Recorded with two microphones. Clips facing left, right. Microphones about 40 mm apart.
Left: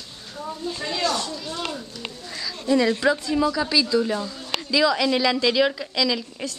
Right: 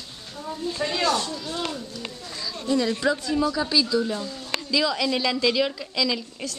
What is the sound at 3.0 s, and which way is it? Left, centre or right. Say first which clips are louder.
Speech: left 1 dB; centre.